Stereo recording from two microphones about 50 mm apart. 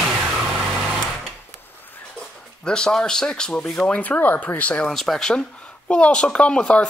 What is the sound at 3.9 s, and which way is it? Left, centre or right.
Speech, left.